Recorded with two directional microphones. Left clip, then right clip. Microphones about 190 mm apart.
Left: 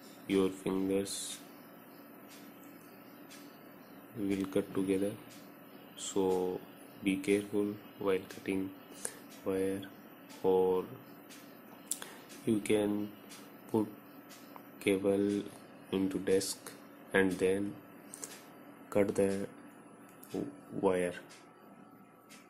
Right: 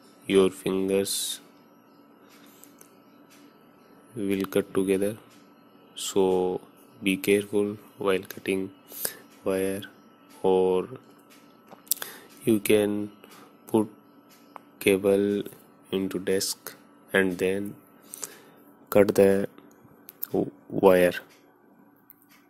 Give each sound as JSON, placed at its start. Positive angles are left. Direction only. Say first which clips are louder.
{"t": 0.3, "sound": "speech", "louder": "right 10 dB", "side_deg": -35}
{"t": 4.3, "sound": "speech", "louder": "right 8 dB", "side_deg": -35}
{"t": 11.9, "sound": "a sound", "louder": "right 10 dB", "side_deg": -35}
{"t": 14.8, "sound": "speech", "louder": "right 9 dB", "side_deg": -35}
{"t": 18.2, "sound": "a sound", "louder": "right 7 dB", "side_deg": -30}
{"t": 18.9, "sound": "speech", "louder": "right 11 dB", "side_deg": -40}